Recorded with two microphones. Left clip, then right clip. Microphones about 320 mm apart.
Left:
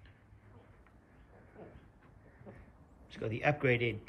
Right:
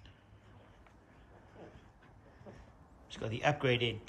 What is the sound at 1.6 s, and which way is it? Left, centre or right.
Vehicle, centre.